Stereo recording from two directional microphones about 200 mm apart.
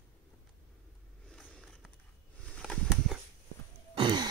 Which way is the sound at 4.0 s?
20° right (ahead or behind).